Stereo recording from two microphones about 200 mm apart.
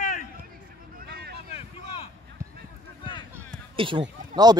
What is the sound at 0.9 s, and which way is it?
Vehicle, 50° right (ahead or behind).